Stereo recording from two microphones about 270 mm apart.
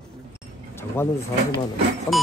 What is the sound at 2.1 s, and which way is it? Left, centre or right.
Music, centre.